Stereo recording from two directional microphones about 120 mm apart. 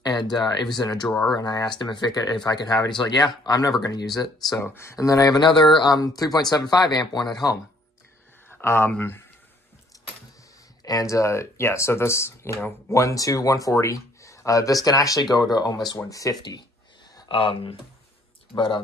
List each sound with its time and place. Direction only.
0.0 s speech: 35° left (ahead or behind)
1.0 s speech: 5° left (ahead or behind)
1.3 s speech: 35° left (ahead or behind)
8.5 s speech: 20° left (ahead or behind)
10.8 s speech: 30° left (ahead or behind)
17.3 s speech: 50° left (ahead or behind)